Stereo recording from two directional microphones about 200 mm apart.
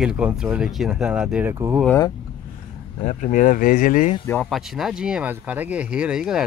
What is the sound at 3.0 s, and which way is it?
Speech, 40° left (ahead or behind).